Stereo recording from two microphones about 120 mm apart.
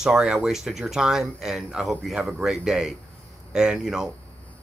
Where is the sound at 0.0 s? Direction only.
5° right (ahead or behind).